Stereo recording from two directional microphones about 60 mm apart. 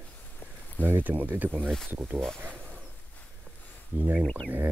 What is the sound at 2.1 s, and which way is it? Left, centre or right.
Speech, centre.